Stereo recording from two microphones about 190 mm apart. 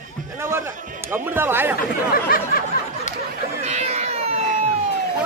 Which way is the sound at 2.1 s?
50° left (ahead or behind).